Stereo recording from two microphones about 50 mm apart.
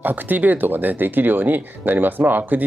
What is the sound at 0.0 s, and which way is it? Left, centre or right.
Speech, right.